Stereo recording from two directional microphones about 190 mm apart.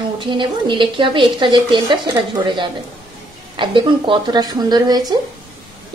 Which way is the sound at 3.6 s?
25° right (ahead or behind).